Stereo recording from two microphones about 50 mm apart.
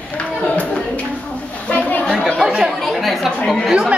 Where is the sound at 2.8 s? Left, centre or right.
Centre.